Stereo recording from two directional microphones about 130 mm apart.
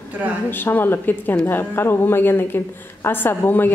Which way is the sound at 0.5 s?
15° left (ahead or behind).